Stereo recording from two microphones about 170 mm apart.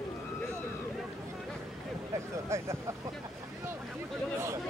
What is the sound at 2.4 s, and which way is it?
Speech, 15° right (ahead or behind).